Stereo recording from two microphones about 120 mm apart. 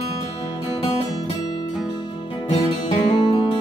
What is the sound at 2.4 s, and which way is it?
Music, 60° left (ahead or behind).